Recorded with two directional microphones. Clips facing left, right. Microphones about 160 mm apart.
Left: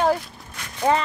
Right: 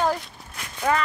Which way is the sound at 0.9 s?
25° left (ahead or behind).